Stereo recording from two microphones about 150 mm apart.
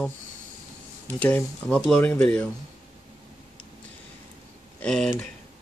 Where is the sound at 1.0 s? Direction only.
10° left (ahead or behind).